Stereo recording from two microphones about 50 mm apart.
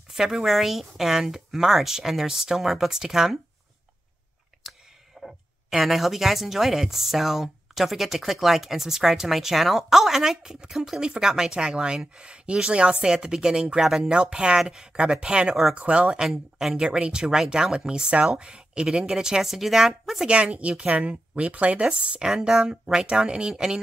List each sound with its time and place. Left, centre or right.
0.1 s speech: centre
5.2 s speech: centre
20.2 s speech: right